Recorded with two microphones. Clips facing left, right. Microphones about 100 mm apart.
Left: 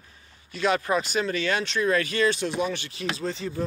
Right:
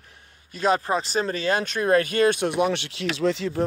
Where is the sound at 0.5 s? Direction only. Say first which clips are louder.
Right 2 dB; 40° right (ahead or behind).